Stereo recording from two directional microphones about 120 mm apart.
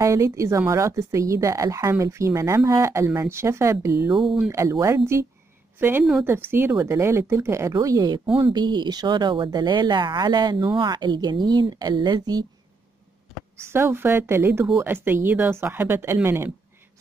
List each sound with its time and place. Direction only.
0.0 s a woman's voice: 25° right (ahead or behind)
8.4 s speech: 40° right (ahead or behind)
13.7 s a woman's voice: 20° right (ahead or behind)